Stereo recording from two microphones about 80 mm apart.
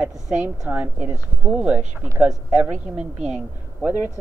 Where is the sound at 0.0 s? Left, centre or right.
Centre.